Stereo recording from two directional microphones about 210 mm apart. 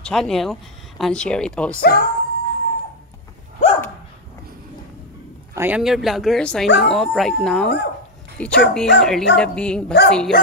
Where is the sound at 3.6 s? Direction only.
35° left (ahead or behind).